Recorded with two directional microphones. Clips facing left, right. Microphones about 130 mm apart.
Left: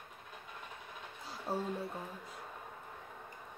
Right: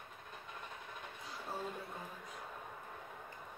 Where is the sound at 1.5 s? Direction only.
35° left (ahead or behind).